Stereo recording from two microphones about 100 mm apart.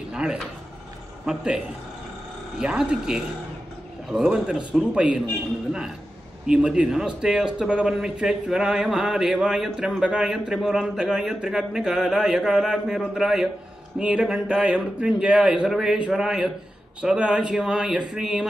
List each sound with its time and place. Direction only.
0.1 s a man's voice: 10° right (ahead or behind)
2.6 s a man's voice: 5° right (ahead or behind)